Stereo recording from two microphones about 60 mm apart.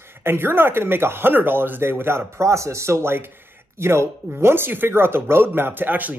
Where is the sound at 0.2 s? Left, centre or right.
Right.